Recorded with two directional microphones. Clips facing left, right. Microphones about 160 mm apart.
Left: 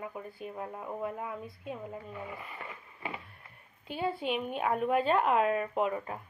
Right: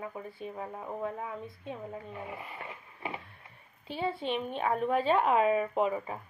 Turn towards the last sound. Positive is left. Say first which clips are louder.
# right 1 dB
turn(degrees=-5)  # may be behind; listen again after turning